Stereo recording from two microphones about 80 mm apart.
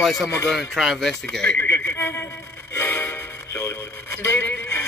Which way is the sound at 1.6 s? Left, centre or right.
Left.